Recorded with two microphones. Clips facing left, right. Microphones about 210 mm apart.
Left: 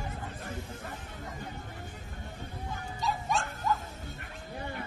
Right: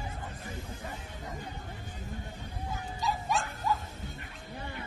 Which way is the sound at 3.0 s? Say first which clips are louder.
Even; centre (ahead or behind).